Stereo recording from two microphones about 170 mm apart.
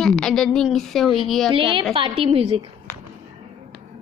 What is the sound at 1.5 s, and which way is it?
A woman's voice, 30° right (ahead or behind).